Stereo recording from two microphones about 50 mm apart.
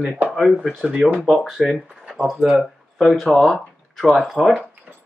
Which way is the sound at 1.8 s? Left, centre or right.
Centre.